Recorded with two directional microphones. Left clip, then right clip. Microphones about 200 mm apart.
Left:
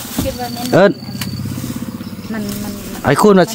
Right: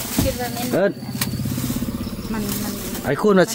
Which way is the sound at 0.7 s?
50° left (ahead or behind).